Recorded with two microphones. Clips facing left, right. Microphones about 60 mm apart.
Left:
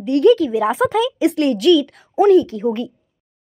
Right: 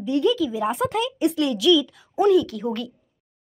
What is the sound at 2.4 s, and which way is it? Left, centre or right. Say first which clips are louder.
Speech: left 6 dB; left.